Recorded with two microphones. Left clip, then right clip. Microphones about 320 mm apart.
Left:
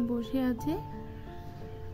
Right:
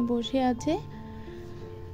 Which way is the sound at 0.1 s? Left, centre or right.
Centre.